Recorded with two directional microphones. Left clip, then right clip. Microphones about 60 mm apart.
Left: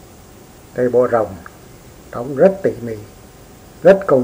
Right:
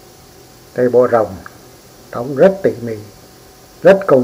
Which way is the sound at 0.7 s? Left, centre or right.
Centre.